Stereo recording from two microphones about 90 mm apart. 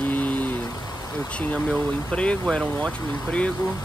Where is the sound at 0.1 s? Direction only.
20° left (ahead or behind).